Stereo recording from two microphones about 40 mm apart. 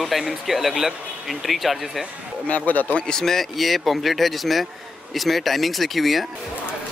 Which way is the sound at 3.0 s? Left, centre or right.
Centre.